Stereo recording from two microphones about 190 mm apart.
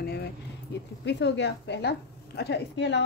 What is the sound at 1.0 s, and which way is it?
A woman's voice, 65° left (ahead or behind).